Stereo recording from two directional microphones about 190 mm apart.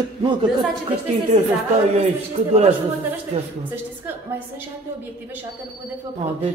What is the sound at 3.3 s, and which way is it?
Speech, 30° right (ahead or behind).